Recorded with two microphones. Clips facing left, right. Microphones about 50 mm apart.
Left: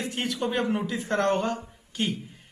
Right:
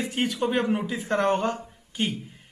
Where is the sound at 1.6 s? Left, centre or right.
Centre.